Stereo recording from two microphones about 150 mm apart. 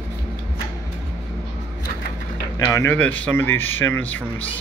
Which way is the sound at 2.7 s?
15° left (ahead or behind).